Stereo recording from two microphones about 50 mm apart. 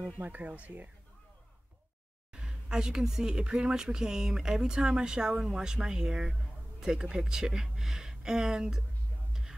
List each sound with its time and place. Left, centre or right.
0.0 s speech: right
2.3 s speech: centre
9.3 s music: centre